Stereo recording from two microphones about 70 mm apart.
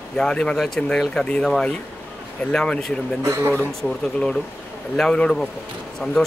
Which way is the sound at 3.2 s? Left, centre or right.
Right.